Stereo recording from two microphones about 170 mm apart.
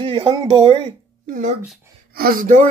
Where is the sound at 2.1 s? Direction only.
55° right (ahead or behind).